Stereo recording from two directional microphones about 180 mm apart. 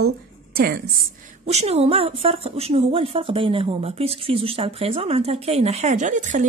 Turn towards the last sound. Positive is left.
turn(degrees=-45)  # may be behind; listen again after turning